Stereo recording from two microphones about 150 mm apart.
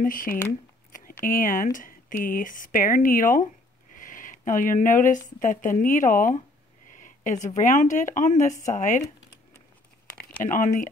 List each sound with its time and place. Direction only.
0.0 s speech: 65° left (ahead or behind)
7.4 s speech: 55° left (ahead or behind)
10.4 s speech: 60° left (ahead or behind)